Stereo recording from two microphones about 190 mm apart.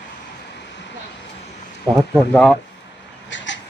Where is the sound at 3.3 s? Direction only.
75° left (ahead or behind).